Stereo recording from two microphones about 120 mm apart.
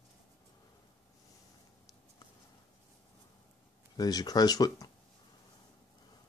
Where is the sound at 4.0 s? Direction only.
30° left (ahead or behind).